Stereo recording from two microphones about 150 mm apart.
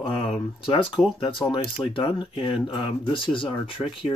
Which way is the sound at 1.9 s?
35° left (ahead or behind).